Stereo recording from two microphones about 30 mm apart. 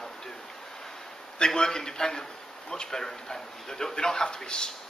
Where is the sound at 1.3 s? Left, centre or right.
Left.